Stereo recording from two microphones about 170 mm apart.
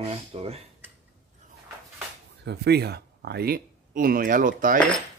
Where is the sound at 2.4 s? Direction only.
80° right; by 4.8 s 55° right (ahead or behind).